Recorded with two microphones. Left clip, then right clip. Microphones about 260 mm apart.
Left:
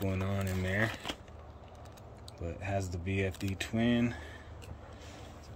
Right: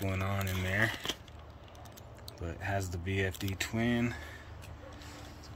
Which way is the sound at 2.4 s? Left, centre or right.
Centre.